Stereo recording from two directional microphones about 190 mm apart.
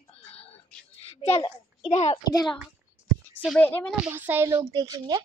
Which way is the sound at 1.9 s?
35° left (ahead or behind).